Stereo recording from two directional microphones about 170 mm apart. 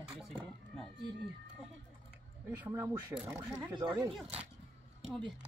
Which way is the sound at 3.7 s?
25° right (ahead or behind).